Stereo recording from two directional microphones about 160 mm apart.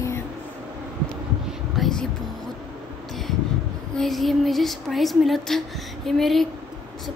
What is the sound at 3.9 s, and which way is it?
Speech, centre (ahead or behind).